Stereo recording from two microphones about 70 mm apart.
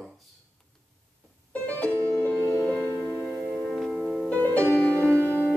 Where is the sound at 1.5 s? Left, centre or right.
Left.